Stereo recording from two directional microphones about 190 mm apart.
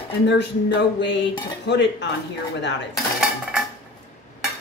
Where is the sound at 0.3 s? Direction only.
65° left (ahead or behind).